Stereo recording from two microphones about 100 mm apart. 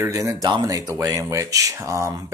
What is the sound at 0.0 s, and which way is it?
Speech, 35° right (ahead or behind).